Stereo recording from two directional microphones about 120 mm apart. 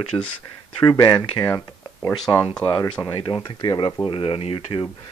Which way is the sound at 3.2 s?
45° left (ahead or behind).